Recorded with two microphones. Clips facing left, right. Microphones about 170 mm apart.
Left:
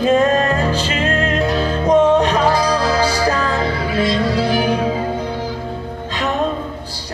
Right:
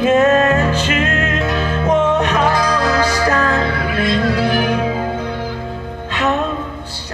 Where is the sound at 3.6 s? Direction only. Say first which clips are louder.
Even; 60° right (ahead or behind).